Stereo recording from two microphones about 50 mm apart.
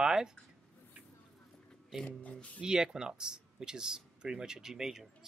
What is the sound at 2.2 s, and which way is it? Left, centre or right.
Speech, left.